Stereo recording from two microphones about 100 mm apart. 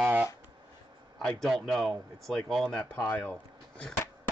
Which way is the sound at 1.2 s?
10° left (ahead or behind).